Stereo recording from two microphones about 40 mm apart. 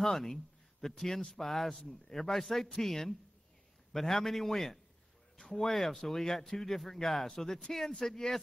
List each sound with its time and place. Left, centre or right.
0.0 s a man's voice: centre